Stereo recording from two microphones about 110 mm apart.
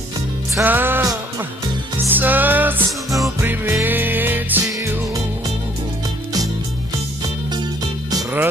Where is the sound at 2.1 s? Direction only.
15° right (ahead or behind).